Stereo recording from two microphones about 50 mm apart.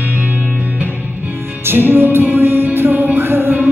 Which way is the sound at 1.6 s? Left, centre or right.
Right.